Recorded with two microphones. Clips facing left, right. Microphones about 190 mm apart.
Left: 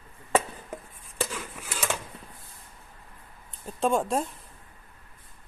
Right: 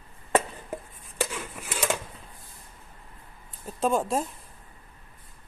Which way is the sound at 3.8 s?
Centre (ahead or behind).